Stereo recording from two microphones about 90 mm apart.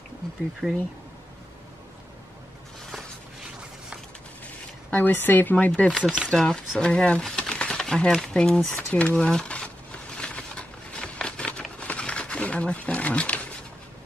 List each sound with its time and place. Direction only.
0.6 s speech: 5° left (ahead or behind)
4.9 s speech: 20° left (ahead or behind)
5.8 s speech: 10° left (ahead or behind)
10.1 s a sound: 10° left (ahead or behind)